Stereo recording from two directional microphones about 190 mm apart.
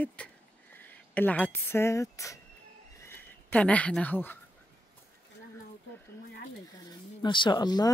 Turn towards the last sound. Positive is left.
turn(degrees=20)  # may be behind; listen again after turning